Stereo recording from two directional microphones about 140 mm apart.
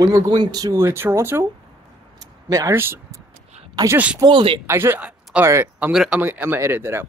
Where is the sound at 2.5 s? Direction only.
25° right (ahead or behind).